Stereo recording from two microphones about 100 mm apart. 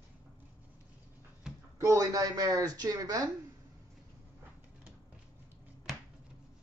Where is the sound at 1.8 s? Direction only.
35° right (ahead or behind).